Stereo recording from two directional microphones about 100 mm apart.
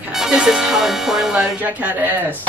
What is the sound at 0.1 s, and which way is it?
Speech, 5° right (ahead or behind).